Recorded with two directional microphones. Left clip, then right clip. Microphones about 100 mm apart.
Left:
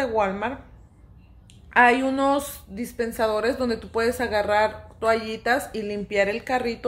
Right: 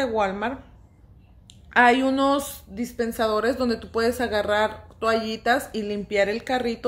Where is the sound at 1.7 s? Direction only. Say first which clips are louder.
Even; 15° right (ahead or behind).